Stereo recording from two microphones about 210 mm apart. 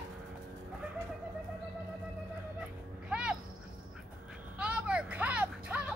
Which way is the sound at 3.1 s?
5° right (ahead or behind).